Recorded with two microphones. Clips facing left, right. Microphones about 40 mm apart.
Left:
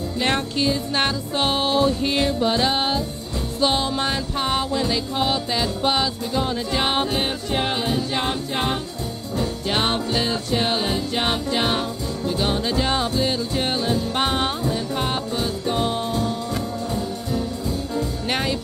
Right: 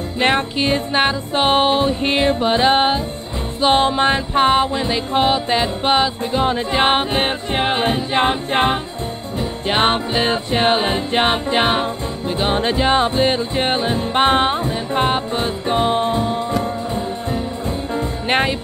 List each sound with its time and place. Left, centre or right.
0.9 s music: right